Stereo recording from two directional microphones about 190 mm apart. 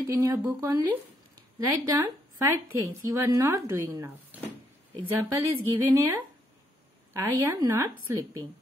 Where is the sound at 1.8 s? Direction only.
20° right (ahead or behind).